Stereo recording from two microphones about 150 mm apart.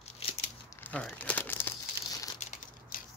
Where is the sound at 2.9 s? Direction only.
70° left (ahead or behind).